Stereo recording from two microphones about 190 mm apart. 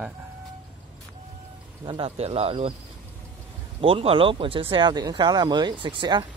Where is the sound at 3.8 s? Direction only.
30° right (ahead or behind).